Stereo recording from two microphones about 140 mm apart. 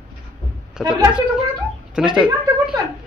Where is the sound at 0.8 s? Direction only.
5° right (ahead or behind).